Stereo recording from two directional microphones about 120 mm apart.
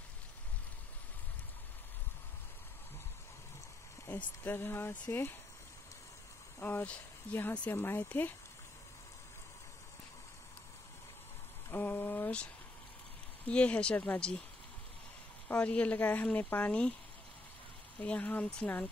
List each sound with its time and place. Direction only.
4.4 s speech: 20° left (ahead or behind)
6.6 s speech: 15° left (ahead or behind)
11.7 s a sound: 15° left (ahead or behind)
13.5 s speech: 10° left (ahead or behind)
15.4 s speech: 10° left (ahead or behind)
17.9 s speech: 10° left (ahead or behind)